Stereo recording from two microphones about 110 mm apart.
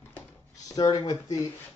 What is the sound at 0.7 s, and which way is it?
Speech, 35° left (ahead or behind).